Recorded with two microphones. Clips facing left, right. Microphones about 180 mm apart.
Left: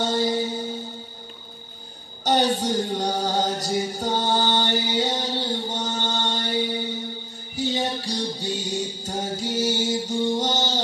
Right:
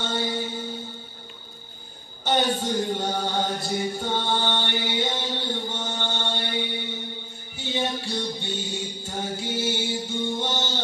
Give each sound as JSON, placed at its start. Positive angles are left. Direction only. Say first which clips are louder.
{"t": 0.0, "sound": "music", "louder": "left 5 dB", "side_deg": 40}
{"t": 2.2, "sound": "music", "louder": "left 3 dB", "side_deg": 40}